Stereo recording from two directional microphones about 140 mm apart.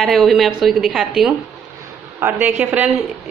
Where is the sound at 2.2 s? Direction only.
15° right (ahead or behind).